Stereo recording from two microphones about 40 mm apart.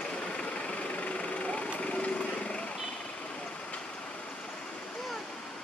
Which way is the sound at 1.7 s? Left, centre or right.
Left.